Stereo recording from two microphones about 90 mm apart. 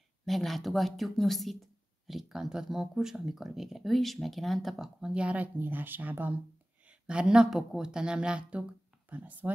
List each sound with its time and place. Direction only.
0.2 s speech: centre (ahead or behind); by 9.5 s 20° right (ahead or behind)